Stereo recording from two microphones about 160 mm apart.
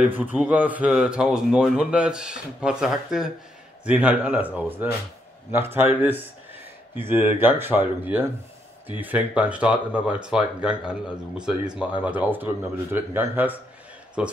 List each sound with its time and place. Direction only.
0.0 s speech: 10° right (ahead or behind)